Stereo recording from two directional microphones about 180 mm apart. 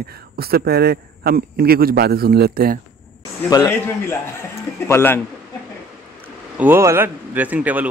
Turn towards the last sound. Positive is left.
turn(degrees=-10)  # may be behind; listen again after turning